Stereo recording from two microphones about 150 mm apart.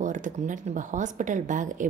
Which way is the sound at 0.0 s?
55° right (ahead or behind).